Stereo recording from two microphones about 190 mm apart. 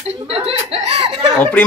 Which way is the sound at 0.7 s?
30° right (ahead or behind).